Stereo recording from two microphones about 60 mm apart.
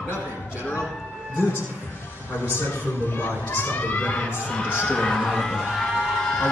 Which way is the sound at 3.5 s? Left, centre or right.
Left.